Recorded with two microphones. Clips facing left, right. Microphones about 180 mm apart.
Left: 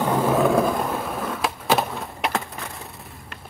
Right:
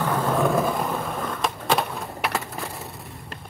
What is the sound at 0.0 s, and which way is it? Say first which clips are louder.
Skateboard: left 3 dB; 20° left (ahead or behind).